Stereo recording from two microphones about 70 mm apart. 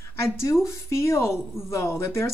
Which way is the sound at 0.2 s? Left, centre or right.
Left.